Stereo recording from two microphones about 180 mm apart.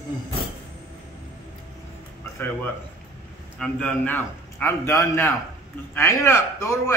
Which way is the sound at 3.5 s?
10° left (ahead or behind).